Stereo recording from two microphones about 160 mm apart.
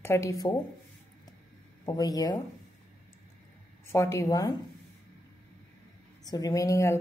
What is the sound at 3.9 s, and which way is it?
Speech, 15° left (ahead or behind).